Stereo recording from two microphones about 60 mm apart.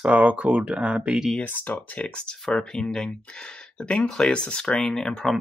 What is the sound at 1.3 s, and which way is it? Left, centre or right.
Speech, left.